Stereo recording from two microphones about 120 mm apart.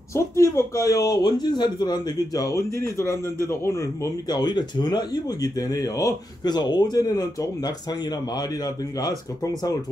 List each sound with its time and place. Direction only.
0.1 s speech: 25° left (ahead or behind)